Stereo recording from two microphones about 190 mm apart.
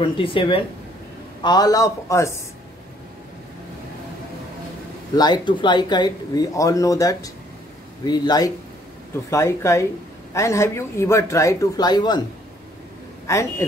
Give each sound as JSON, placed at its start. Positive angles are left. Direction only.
{"t": 0.0, "sound": "speech", "side_deg": 25}
{"t": 5.1, "sound": "a man's voice", "side_deg": 20}
{"t": 13.3, "sound": "a man's voice", "side_deg": 15}